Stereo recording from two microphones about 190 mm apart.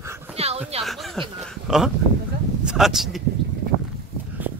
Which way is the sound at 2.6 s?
5° right (ahead or behind).